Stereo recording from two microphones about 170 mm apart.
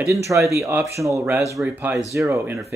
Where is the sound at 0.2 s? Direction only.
15° right (ahead or behind).